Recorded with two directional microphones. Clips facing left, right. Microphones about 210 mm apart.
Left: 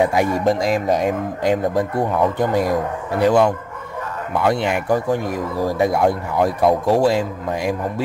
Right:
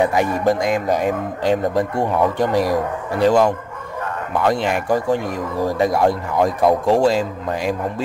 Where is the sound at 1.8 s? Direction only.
Centre (ahead or behind).